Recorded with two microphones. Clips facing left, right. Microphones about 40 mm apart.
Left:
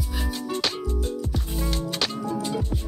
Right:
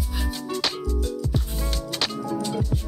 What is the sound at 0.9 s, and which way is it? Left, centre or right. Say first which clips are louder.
Music: even; left.